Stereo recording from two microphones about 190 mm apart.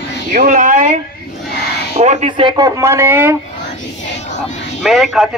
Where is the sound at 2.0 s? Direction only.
35° right (ahead or behind); by 3.4 s 10° right (ahead or behind).